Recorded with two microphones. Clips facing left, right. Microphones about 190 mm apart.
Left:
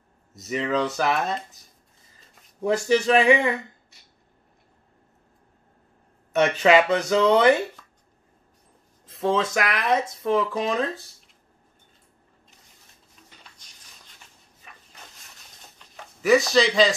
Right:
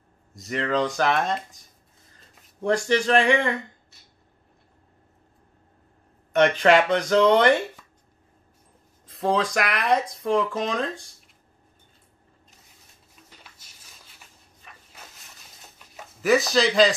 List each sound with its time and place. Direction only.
0.3 s speech: 5° left (ahead or behind)
6.3 s speech: 5° left (ahead or behind)
9.0 s speech: centre (ahead or behind)
13.6 s a sound: 5° right (ahead or behind)